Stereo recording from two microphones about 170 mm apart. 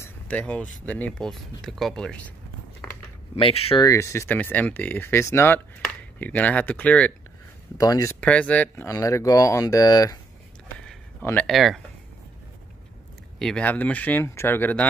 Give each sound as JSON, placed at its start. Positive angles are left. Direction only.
{"t": 0.0, "sound": "a sound", "side_deg": 10}
{"t": 0.8, "sound": "speech", "side_deg": 10}
{"t": 3.3, "sound": "speech", "side_deg": 35}
{"t": 3.8, "sound": "speech", "side_deg": 15}
{"t": 7.7, "sound": "speech", "side_deg": 20}
{"t": 10.9, "sound": "a sound", "side_deg": 10}
{"t": 13.4, "sound": "speech", "side_deg": 5}